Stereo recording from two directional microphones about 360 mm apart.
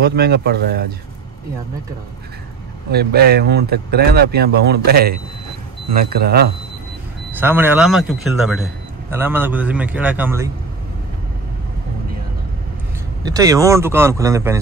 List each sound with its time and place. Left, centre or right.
0.0 s speech: right
2.9 s speech: right
7.3 s a man's voice: centre
13.2 s a man's voice: centre